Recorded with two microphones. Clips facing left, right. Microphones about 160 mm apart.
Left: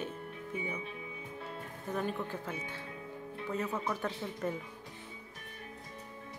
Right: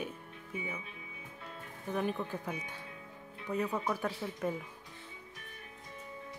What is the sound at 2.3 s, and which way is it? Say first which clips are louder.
Speech: even; 15° right (ahead or behind).